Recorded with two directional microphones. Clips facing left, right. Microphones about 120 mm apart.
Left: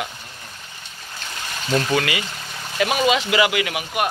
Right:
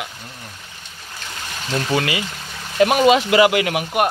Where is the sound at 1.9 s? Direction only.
25° right (ahead or behind).